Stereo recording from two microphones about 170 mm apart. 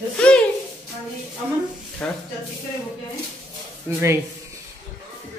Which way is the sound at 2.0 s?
5° left (ahead or behind).